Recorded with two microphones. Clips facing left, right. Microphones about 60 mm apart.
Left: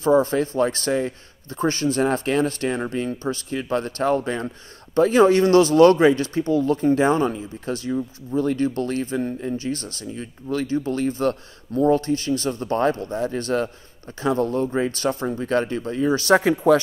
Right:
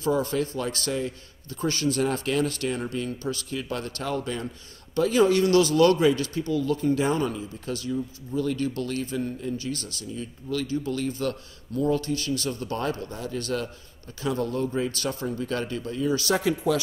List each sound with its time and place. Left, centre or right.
0.0 s speech: left